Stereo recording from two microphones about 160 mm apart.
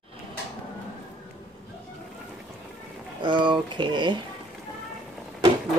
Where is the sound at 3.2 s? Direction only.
30° right (ahead or behind).